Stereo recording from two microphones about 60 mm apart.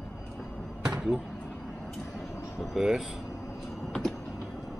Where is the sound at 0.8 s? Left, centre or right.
Centre.